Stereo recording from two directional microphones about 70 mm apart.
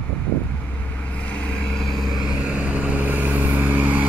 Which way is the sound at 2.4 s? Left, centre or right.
Centre.